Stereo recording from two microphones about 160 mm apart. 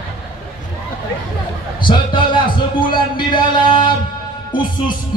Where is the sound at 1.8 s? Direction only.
30° left (ahead or behind).